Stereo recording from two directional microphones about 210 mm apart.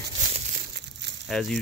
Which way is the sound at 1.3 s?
Centre (ahead or behind).